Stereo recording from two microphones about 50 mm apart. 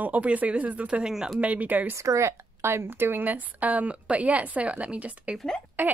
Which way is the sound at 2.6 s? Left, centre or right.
Right.